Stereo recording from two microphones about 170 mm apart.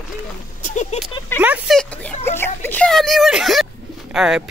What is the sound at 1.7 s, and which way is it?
Speech, 5° left (ahead or behind).